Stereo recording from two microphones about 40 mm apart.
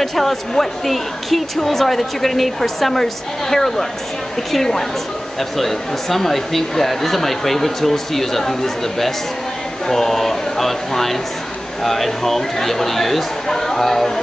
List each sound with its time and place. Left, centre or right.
0.0 s a woman's voice: centre